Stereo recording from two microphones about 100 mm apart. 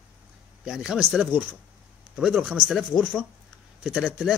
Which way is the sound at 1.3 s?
15° right (ahead or behind).